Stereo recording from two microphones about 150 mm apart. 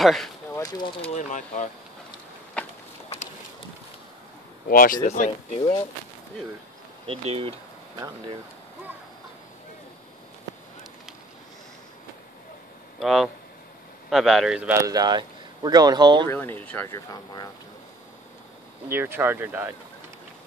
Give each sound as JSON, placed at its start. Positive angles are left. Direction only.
{"t": 0.0, "sound": "speech", "side_deg": 0}
{"t": 0.6, "sound": "a sound", "side_deg": 25}
{"t": 1.0, "sound": "speech", "side_deg": 50}
{"t": 4.6, "sound": "speech", "side_deg": 70}
{"t": 5.0, "sound": "speech", "side_deg": 50}
{"t": 7.1, "sound": "speech", "side_deg": -40}
{"t": 13.0, "sound": "speech", "side_deg": 0}
{"t": 14.7, "sound": "speech", "side_deg": -20}
{"t": 16.3, "sound": "speech", "side_deg": 10}
{"t": 18.9, "sound": "speech", "side_deg": -15}